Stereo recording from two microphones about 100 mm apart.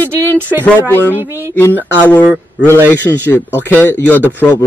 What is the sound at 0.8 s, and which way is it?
Speech, 20° left (ahead or behind).